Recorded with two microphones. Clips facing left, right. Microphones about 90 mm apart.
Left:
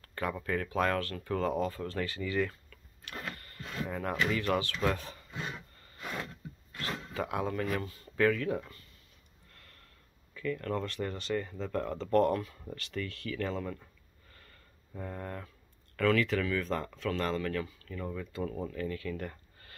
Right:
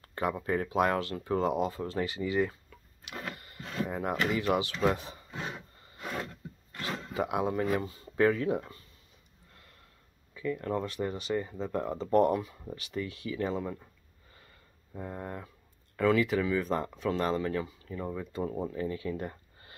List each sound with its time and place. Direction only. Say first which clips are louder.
0.1 s speech: right 3 dB; 20° right (ahead or behind)
6.8 s speech: right 3 dB; 15° right (ahead or behind)
10.3 s speech: right 2 dB; 15° right (ahead or behind)
15.0 s speech: right 1 dB; 20° right (ahead or behind)